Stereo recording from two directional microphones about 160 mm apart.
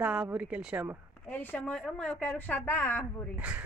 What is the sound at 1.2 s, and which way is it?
A woman's voice, 10° left (ahead or behind).